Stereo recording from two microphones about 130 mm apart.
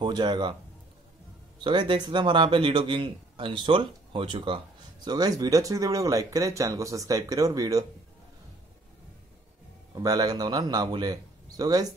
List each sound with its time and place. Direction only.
0.0 s a man's voice: 35° right (ahead or behind)
1.6 s a man's voice: 35° right (ahead or behind)
9.9 s a man's voice: 30° right (ahead or behind)